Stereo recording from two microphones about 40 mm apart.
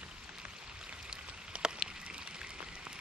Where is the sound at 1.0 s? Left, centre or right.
Right.